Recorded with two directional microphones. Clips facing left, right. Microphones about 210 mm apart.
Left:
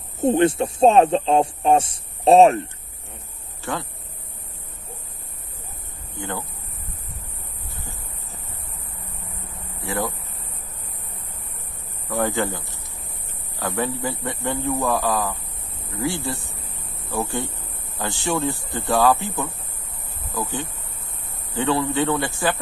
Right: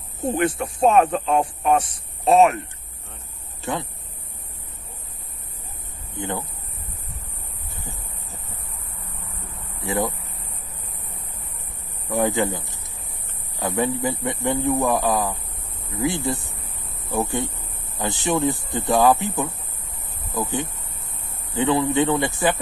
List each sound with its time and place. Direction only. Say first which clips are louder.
0.2 s speech: left 5 dB; 25° left (ahead or behind)
3.6 s speech: right 1 dB; 20° right (ahead or behind)
6.1 s speech: right 2 dB; 20° right (ahead or behind)
9.8 s speech: right 2 dB; 20° right (ahead or behind)
12.1 s speech: right 2 dB; 20° right (ahead or behind)